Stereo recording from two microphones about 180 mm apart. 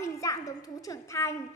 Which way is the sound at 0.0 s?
20° left (ahead or behind).